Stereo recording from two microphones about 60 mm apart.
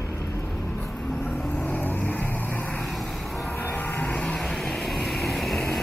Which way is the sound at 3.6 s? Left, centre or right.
Left.